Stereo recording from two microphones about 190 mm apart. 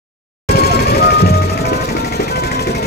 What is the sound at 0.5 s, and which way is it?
Music, 55° left (ahead or behind).